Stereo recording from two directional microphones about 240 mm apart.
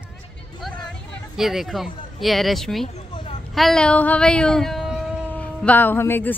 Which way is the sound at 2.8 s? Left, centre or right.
Left.